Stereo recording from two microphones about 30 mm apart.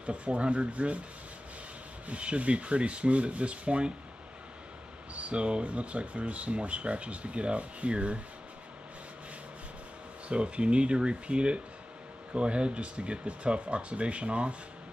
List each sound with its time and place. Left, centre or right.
0.0 s speech: right
2.0 s speech: right
5.1 s speech: right
10.2 s speech: right